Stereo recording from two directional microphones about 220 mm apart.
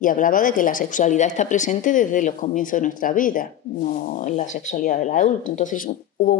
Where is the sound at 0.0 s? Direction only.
35° left (ahead or behind).